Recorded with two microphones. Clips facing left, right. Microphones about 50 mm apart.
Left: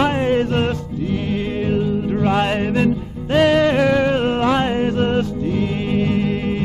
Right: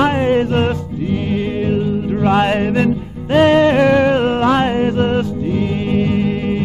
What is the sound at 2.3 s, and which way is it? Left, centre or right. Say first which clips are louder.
Music: right 5 dB; right.